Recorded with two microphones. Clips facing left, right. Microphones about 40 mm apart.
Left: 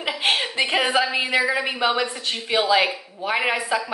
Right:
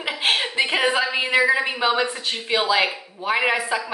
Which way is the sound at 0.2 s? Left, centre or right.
Centre.